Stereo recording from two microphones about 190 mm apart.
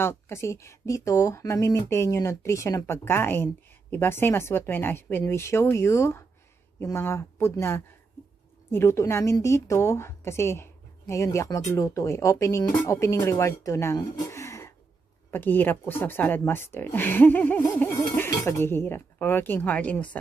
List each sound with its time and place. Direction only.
0.0 s a woman's voice: 15° left (ahead or behind)